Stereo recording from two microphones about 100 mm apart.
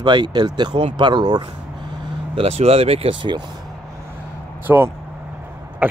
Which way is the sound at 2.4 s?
90° right.